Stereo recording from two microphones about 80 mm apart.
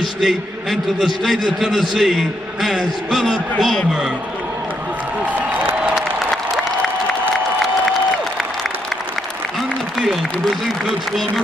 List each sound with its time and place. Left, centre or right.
0.0 s a man's voice: centre
5.2 s applause: right
5.9 s applause: centre
9.6 s applause: centre